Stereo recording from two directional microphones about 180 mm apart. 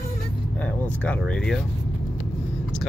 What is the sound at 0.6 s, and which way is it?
Speech, 5° left (ahead or behind).